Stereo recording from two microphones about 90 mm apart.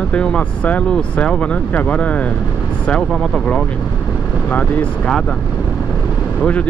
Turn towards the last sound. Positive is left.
turn(degrees=15)  # may be behind; listen again after turning